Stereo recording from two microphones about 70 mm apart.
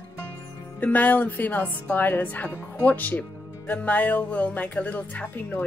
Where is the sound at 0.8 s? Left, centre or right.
Left.